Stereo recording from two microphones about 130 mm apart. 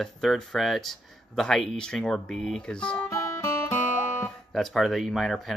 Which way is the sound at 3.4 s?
20° left (ahead or behind).